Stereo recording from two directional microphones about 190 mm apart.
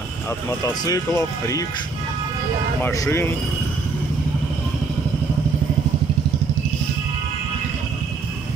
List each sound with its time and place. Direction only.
0.7 s speech: 15° left (ahead or behind)
2.8 s speech: 15° left (ahead or behind)